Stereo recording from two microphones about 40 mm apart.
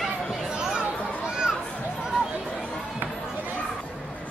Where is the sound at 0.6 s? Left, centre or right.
Centre.